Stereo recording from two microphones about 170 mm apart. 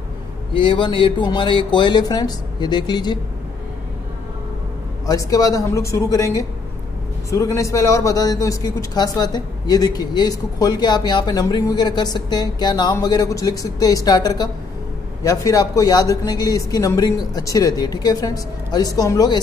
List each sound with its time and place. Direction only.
0.6 s a man's voice: 30° left (ahead or behind)
5.0 s a man's voice: 20° left (ahead or behind)